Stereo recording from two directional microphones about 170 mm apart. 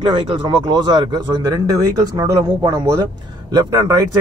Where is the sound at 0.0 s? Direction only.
30° right (ahead or behind).